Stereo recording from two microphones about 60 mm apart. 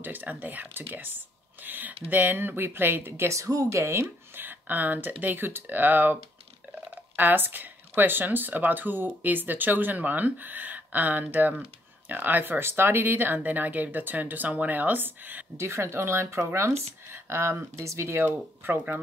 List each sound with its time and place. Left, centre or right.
0.0 s speech: right
4.4 s speech: right
7.2 s speech: right
15.5 s speech: right
17.7 s speech: right
18.2 s speech: right